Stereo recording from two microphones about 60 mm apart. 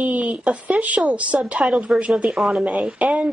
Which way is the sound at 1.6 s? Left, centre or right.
Centre.